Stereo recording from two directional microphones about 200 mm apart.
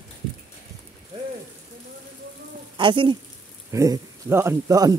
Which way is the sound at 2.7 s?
25° right (ahead or behind).